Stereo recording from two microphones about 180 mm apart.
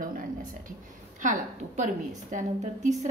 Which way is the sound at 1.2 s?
45° right (ahead or behind).